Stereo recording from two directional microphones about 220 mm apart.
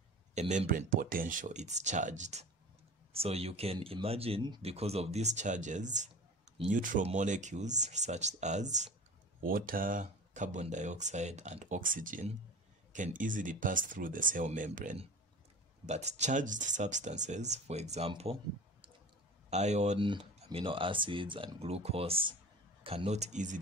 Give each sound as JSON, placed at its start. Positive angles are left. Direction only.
{"t": 0.3, "sound": "speech", "side_deg": -35}